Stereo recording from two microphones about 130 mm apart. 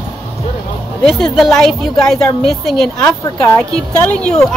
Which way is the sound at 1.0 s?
Centre (ahead or behind).